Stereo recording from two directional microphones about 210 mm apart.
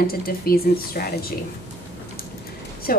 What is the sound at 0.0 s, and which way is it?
A woman's voice, 45° left (ahead or behind).